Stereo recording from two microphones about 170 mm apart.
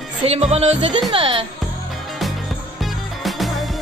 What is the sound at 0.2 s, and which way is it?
Music, 40° right (ahead or behind).